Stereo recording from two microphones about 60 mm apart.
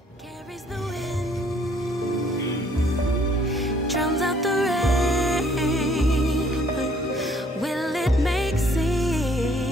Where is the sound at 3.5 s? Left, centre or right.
Centre.